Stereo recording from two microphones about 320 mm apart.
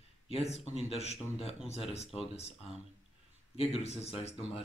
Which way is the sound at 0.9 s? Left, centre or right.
Centre.